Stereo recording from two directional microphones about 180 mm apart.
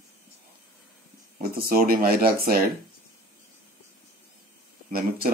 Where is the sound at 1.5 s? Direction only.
55° right (ahead or behind).